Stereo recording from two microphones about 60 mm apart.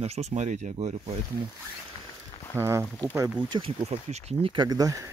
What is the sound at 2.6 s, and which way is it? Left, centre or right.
Speech, right.